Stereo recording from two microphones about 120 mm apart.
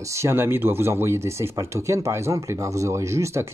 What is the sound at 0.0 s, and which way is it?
Speech, 25° right (ahead or behind).